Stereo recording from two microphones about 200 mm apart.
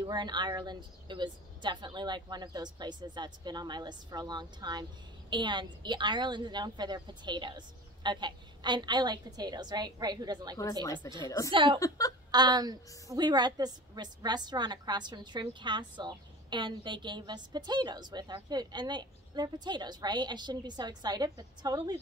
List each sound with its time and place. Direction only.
0.0 s a woman's voice: 20° right (ahead or behind)
10.6 s speech: 15° left (ahead or behind)
11.5 s a woman's voice: 25° right (ahead or behind)